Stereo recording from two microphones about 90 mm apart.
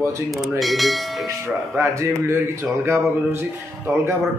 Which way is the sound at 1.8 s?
30° right (ahead or behind).